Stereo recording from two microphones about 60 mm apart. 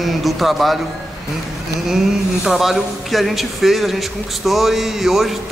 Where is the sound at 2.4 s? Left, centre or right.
Centre.